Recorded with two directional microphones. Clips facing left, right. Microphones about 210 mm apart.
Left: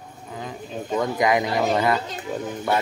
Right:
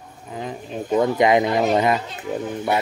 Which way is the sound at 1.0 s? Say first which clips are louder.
Right 4 dB; 25° right (ahead or behind).